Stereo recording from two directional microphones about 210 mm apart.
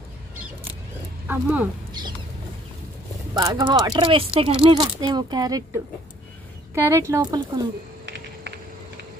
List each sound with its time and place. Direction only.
1.2 s speech: 10° right (ahead or behind)
3.3 s speech: 20° right (ahead or behind)
6.7 s speech: 10° right (ahead or behind)